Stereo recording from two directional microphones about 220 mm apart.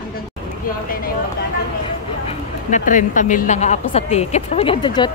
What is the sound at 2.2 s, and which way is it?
A woman's voice, 35° left (ahead or behind).